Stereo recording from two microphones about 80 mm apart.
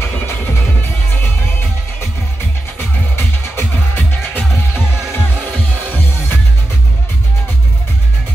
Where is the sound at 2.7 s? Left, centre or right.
Left.